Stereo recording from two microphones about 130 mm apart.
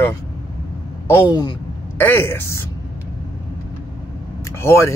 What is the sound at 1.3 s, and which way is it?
Speech, 35° left (ahead or behind).